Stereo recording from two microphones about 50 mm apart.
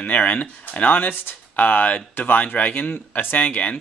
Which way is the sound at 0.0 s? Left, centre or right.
Left.